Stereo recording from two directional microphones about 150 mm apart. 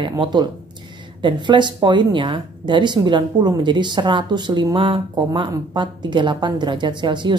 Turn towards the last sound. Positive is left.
turn(degrees=-30)  # may be behind; listen again after turning